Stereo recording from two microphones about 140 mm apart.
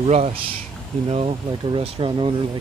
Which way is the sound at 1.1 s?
40° right (ahead or behind).